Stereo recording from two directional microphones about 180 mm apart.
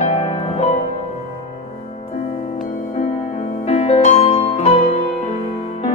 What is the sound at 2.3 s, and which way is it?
Music, 35° left (ahead or behind).